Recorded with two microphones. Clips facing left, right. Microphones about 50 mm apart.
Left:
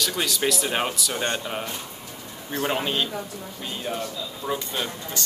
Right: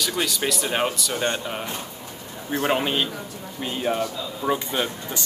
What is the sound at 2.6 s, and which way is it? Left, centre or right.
A man's voice, centre.